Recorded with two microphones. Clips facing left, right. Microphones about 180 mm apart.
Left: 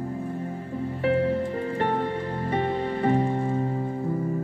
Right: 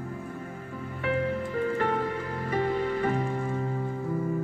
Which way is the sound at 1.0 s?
30° left (ahead or behind).